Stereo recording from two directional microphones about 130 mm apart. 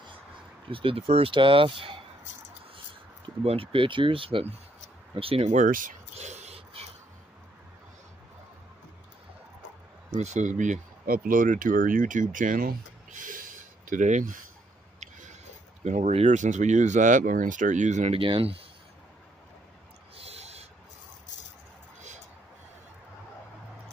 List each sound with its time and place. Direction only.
0.7 s speech: 45° right (ahead or behind)
3.4 s speech: 45° right (ahead or behind)
5.5 s a sound: 85° right; by 6.9 s 50° right (ahead or behind)
10.1 s speech: 65° right (ahead or behind); by 14.4 s 80° right
15.8 s speech: 65° right (ahead or behind)
18.2 s speech: 45° right (ahead or behind)
20.2 s snort: 55° right (ahead or behind)